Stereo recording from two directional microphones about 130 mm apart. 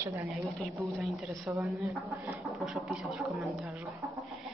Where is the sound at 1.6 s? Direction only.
Centre (ahead or behind).